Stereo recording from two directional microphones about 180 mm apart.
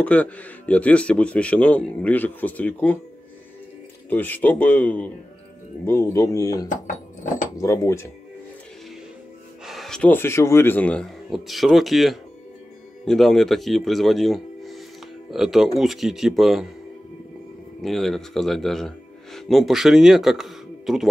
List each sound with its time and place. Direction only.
0.0 s speech: 10° left (ahead or behind)
4.1 s speech: 10° left (ahead or behind)
9.7 s speech: centre (ahead or behind)
17.8 s speech: centre (ahead or behind)